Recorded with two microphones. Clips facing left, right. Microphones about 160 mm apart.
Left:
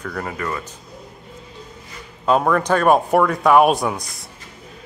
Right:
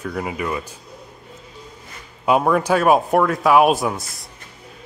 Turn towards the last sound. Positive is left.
turn(degrees=0)  # may be behind; listen again after turning